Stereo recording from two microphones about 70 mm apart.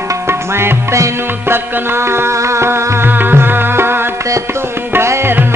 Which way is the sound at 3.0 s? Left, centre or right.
Right.